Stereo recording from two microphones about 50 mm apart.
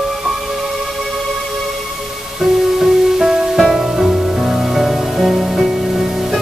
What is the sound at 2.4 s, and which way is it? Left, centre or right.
Music, centre.